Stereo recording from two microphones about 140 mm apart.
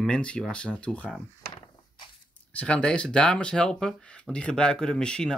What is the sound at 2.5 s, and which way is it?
Speech, 10° left (ahead or behind).